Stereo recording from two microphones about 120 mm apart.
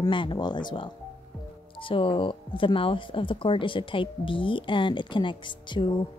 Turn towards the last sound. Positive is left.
turn(degrees=40)  # may be behind; listen again after turning